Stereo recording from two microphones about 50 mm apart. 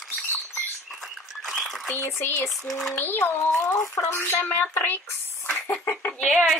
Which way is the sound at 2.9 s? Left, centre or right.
Left.